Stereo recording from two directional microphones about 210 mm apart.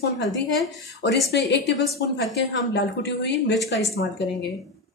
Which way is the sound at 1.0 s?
55° left (ahead or behind).